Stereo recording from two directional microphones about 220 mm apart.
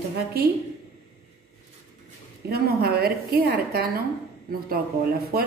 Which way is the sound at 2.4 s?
45° right (ahead or behind).